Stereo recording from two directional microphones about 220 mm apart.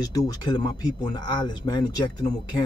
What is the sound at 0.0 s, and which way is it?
A man's voice, 15° left (ahead or behind).